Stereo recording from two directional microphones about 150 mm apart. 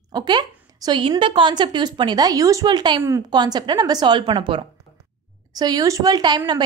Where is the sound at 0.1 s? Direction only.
30° right (ahead or behind).